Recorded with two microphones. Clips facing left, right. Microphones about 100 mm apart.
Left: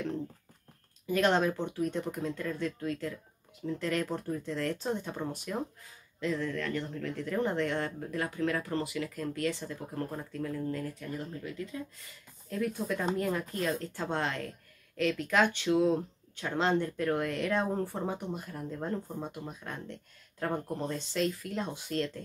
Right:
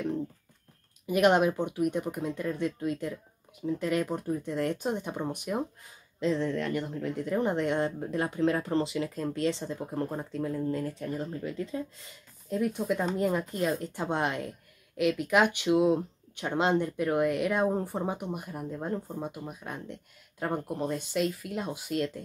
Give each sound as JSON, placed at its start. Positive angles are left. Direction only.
{"t": 1.0, "sound": "speech", "side_deg": -15}